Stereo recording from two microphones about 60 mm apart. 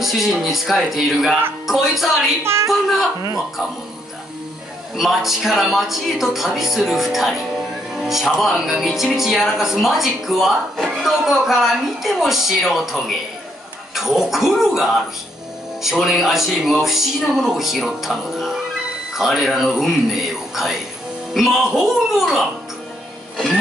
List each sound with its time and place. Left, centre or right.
0.0 s speech: centre
2.4 s a woman's voice: right
2.7 s speech: centre
4.9 s speech: centre